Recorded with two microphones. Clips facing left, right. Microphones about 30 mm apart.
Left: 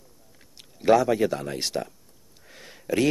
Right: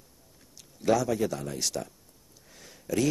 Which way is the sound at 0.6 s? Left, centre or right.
Left.